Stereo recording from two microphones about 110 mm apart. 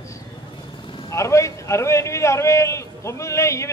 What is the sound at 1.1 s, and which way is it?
A man's voice, 25° left (ahead or behind).